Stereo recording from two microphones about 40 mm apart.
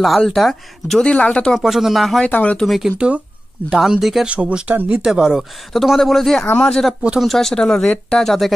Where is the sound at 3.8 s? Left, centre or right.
Centre.